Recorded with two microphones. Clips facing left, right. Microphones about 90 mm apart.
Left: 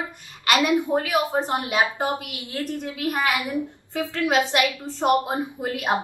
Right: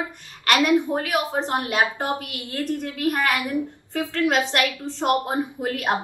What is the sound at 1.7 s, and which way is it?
A woman's voice, 10° left (ahead or behind).